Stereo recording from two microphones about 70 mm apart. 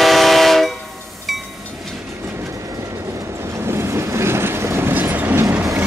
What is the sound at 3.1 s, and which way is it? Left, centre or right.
Vehicle, right.